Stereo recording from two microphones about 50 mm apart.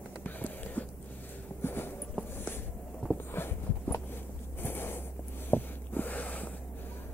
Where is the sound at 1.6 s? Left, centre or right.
Left.